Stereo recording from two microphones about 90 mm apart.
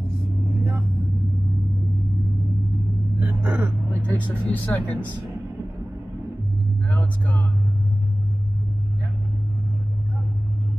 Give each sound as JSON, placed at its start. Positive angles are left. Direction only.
{"t": 3.2, "sound": "gasp", "side_deg": -20}
{"t": 4.1, "sound": "speech", "side_deg": 15}
{"t": 6.9, "sound": "music", "side_deg": 20}